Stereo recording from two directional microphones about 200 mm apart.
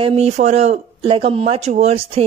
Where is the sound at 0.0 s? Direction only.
30° right (ahead or behind).